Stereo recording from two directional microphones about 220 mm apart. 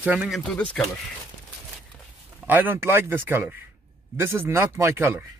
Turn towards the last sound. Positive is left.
turn(degrees=-10)  # may be behind; listen again after turning